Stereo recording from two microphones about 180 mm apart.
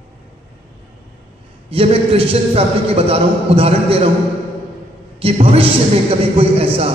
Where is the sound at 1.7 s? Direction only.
30° right (ahead or behind).